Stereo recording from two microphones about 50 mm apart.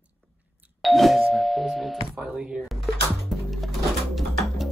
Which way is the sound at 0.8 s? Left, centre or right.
Centre.